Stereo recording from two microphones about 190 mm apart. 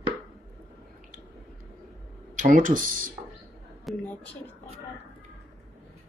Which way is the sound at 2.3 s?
45° right (ahead or behind).